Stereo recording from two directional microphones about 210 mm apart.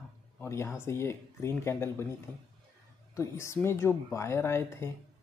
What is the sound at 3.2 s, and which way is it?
Speech, 15° left (ahead or behind).